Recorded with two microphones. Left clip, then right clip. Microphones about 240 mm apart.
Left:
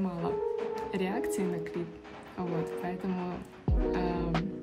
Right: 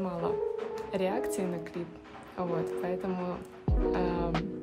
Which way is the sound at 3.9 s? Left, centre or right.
Centre.